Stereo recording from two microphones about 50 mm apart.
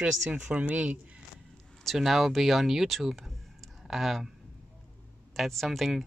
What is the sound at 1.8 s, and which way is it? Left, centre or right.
Speech, centre.